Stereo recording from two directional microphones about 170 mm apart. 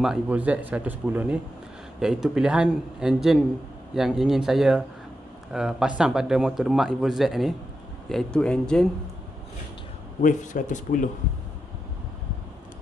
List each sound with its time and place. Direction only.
0.0 s speech: 5° right (ahead or behind)
10.2 s speech: 50° left (ahead or behind)